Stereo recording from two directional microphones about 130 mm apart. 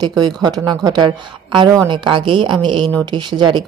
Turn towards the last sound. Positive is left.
turn(degrees=-35)  # may be behind; listen again after turning